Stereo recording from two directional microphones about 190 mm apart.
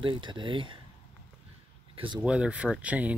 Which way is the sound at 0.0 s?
25° right (ahead or behind).